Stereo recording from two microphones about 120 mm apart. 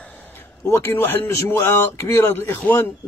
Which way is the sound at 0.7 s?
20° left (ahead or behind).